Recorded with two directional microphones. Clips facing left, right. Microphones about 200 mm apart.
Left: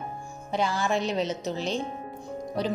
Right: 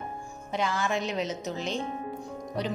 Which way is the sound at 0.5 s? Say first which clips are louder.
Left 2 dB; 35° left (ahead or behind).